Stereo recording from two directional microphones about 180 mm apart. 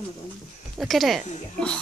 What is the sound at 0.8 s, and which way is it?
Speech, centre (ahead or behind).